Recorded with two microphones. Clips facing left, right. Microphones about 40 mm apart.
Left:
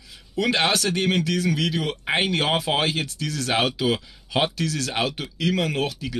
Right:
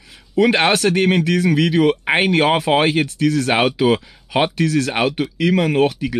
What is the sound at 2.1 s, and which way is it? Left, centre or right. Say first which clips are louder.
Speech: right 7 dB; right.